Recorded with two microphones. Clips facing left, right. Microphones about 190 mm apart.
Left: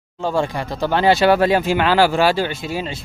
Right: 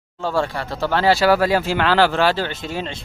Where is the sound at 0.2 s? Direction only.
15° left (ahead or behind).